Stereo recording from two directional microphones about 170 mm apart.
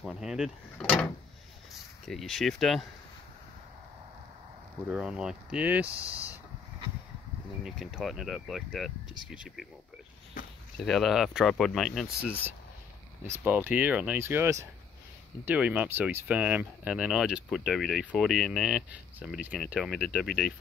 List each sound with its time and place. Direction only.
0.0 s speech: 5° right (ahead or behind)
4.8 s speech: 5° right (ahead or behind)
7.6 s speech: centre (ahead or behind)
10.4 s a sound: 50° left (ahead or behind)
10.8 s speech: centre (ahead or behind)
13.3 s speech: 10° right (ahead or behind)